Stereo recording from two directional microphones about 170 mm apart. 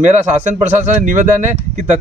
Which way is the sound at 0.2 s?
45° right (ahead or behind).